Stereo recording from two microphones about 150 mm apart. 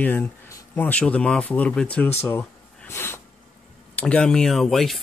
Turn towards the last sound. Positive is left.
turn(degrees=0)  # may be behind; listen again after turning